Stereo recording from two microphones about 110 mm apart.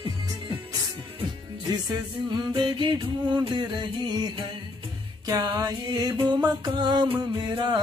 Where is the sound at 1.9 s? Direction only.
40° right (ahead or behind).